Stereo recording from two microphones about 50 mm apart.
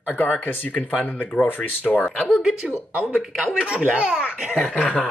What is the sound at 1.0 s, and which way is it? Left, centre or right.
Speech, left.